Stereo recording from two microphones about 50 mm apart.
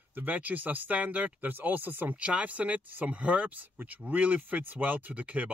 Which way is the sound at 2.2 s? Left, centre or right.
Right.